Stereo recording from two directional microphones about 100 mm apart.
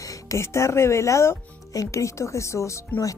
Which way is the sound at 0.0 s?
35° left (ahead or behind).